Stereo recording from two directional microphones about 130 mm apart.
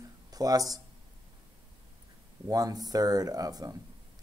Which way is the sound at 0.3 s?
30° right (ahead or behind).